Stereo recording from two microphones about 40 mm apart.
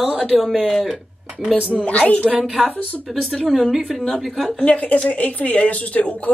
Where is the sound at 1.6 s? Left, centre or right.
Left.